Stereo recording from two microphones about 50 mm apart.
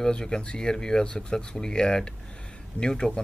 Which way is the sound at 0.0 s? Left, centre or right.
Centre.